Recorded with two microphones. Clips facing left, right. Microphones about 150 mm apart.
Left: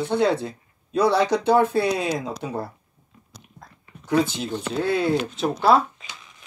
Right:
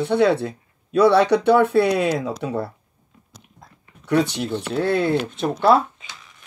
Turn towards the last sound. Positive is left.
turn(degrees=-55)  # may be behind; listen again after turning